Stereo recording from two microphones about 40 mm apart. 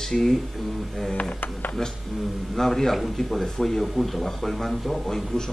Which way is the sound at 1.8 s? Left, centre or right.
Centre.